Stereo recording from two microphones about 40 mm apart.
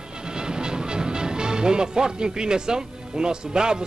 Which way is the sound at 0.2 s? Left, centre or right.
Centre.